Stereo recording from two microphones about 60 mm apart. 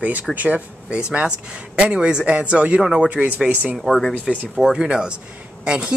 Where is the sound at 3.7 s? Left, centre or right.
Centre.